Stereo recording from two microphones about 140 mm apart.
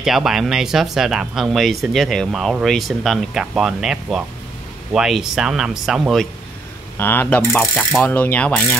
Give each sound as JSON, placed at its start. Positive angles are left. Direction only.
{"t": 0.0, "sound": "speech", "side_deg": -5}
{"t": 7.0, "sound": "ratchet", "side_deg": 15}